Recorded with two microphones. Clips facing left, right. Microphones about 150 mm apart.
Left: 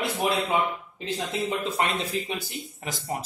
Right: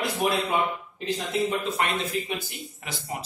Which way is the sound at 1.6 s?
30° left (ahead or behind).